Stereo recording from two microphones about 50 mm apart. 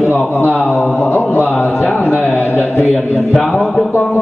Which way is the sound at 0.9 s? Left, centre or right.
Left.